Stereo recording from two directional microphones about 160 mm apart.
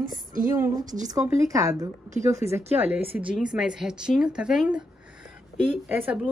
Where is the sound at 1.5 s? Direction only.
20° right (ahead or behind).